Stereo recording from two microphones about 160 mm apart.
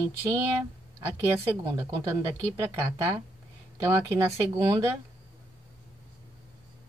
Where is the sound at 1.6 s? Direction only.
20° right (ahead or behind).